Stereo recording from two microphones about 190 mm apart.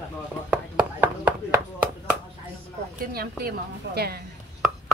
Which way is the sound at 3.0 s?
55° right (ahead or behind).